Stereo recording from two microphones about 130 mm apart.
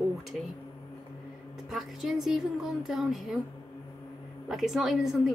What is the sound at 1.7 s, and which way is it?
A woman's voice, centre (ahead or behind).